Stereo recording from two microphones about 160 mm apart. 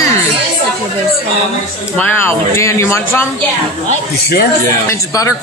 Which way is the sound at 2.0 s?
15° left (ahead or behind).